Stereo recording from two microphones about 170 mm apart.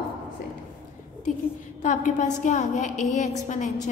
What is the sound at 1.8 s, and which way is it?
A woman's voice, 45° left (ahead or behind).